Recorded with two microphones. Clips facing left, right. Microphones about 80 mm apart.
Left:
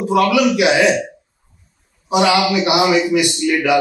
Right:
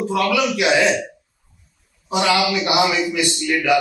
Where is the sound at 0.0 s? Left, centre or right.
Centre.